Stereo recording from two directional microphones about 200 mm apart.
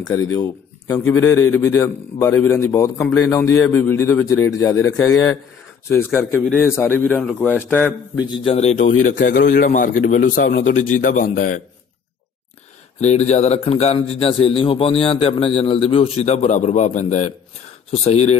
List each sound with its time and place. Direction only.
0.0 s a man's voice: 15° left (ahead or behind)
8.5 s speech: 35° left (ahead or behind)
8.9 s speech: 90° left
9.3 s a man's voice: 60° left (ahead or behind)
9.7 s a man's voice: 40° left (ahead or behind)
13.0 s a man's voice: 35° left (ahead or behind)